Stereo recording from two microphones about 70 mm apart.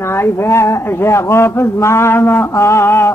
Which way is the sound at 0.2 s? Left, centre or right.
Left.